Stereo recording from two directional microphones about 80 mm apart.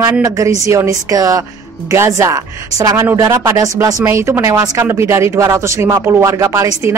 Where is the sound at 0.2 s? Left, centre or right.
Right.